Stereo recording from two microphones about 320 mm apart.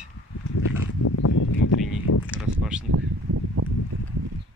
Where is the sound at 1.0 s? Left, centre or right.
Left.